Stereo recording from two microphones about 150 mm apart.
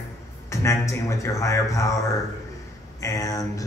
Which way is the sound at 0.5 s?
20° left (ahead or behind).